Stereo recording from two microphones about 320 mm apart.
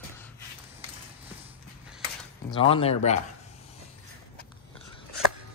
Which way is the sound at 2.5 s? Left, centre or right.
Centre.